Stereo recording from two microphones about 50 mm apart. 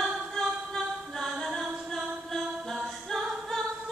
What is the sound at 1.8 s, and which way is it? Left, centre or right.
Music, centre.